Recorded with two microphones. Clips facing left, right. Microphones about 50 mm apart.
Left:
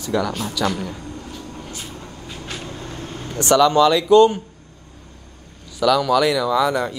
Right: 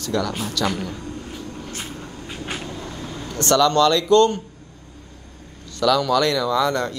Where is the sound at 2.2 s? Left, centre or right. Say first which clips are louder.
Right 2 dB; right.